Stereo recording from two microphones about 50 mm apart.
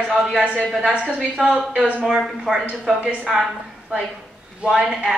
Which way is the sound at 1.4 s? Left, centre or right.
Centre.